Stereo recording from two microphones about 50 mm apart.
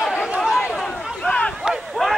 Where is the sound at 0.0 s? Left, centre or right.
Centre.